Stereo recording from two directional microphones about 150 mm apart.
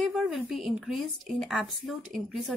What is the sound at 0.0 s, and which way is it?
A woman's voice, centre (ahead or behind).